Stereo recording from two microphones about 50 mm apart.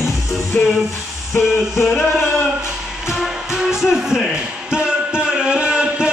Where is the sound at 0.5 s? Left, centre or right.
Left.